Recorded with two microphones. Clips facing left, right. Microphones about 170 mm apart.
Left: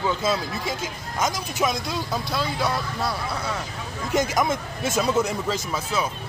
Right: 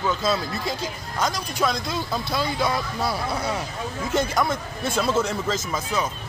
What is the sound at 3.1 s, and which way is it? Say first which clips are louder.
Speech: right 2 dB; 10° right (ahead or behind).